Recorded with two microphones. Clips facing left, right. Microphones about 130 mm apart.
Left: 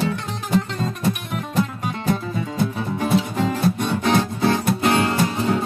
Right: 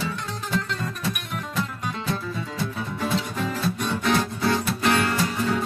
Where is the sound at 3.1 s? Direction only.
20° left (ahead or behind).